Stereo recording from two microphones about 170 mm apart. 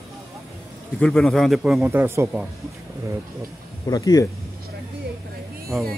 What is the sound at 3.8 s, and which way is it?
Speech, 20° left (ahead or behind).